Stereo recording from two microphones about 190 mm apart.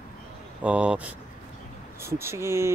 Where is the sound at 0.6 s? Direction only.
5° right (ahead or behind).